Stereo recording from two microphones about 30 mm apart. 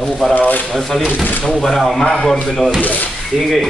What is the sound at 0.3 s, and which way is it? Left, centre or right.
Speech, left.